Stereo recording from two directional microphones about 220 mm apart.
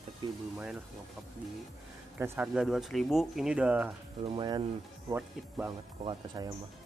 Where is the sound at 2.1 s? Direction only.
10° right (ahead or behind).